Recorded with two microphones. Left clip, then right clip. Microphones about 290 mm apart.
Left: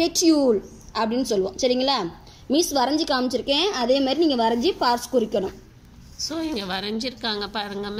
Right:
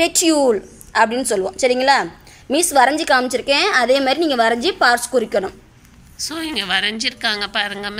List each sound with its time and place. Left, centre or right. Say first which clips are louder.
0.2 s a woman's voice: right 4 dB; right
3.4 s a woman's voice: right 6 dB; right
5.1 s a woman's voice: right 4 dB; right
6.2 s a woman's voice: right 5 dB; centre